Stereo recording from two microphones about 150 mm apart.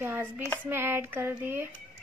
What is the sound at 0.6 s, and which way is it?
Speech, 15° right (ahead or behind).